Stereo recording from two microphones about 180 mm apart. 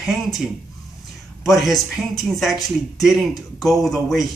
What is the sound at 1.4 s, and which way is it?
Speech, centre (ahead or behind).